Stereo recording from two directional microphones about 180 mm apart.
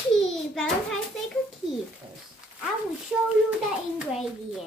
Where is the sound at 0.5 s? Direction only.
Centre (ahead or behind).